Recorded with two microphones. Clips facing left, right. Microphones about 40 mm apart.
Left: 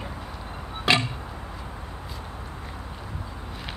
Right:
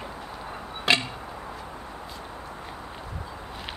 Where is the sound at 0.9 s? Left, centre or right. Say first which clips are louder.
Left 1 dB; centre.